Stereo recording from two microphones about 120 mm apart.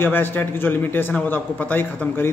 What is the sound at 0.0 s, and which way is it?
A man's voice, 15° left (ahead or behind).